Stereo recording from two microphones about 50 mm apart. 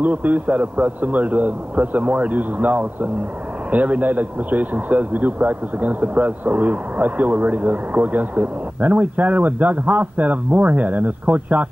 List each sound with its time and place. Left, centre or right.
0.0 s speech: right